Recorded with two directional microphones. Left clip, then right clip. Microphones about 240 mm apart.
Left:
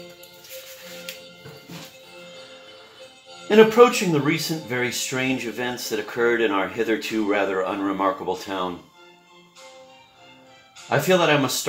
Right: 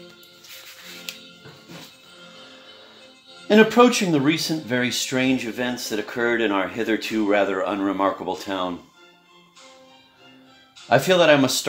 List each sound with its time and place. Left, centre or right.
3.4 s speech: right
10.9 s speech: right